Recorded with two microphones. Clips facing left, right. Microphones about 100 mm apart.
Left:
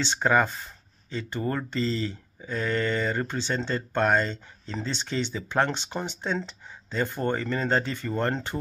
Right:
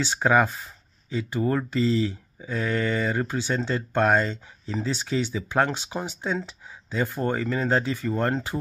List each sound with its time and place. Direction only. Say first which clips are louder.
0.0 s speech: right 2 dB; 10° right (ahead or behind)